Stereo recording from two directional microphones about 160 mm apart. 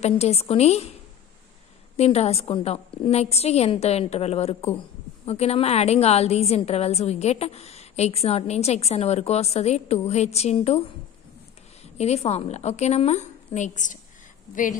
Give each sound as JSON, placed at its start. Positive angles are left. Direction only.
{"t": 0.0, "sound": "a woman's voice", "side_deg": 40}
{"t": 2.0, "sound": "a woman's voice", "side_deg": 40}
{"t": 11.8, "sound": "a woman's voice", "side_deg": 40}